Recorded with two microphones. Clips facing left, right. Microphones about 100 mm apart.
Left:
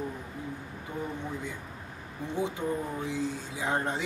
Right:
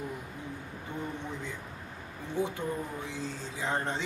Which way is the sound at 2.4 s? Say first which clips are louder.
Even; 15° left (ahead or behind).